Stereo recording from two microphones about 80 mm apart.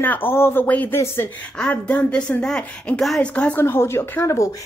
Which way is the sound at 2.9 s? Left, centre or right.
Centre.